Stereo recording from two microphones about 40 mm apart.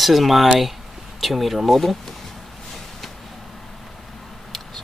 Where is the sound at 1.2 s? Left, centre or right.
Centre.